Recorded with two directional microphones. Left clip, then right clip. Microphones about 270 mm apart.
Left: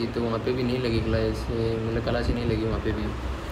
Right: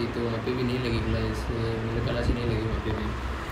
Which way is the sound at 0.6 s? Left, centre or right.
Centre.